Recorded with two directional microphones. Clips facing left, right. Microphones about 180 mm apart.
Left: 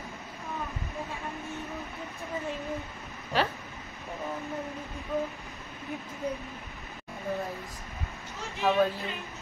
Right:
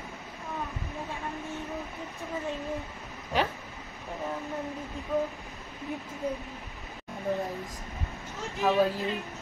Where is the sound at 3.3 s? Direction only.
15° right (ahead or behind).